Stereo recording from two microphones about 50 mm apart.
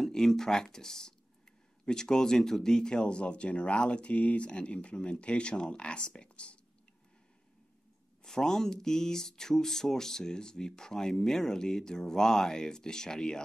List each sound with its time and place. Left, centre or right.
0.0 s speech: centre
8.2 s speech: centre